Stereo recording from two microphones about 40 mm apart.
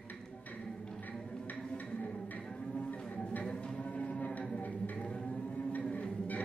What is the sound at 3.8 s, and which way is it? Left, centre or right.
Music, left.